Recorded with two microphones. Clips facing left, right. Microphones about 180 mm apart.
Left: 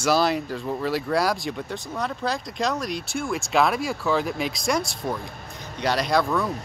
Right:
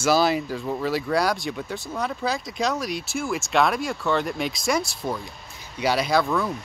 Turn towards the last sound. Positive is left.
turn(degrees=0)  # may be behind; listen again after turning